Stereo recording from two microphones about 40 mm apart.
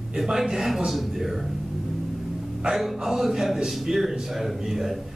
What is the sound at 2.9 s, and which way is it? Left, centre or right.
A man's voice, centre.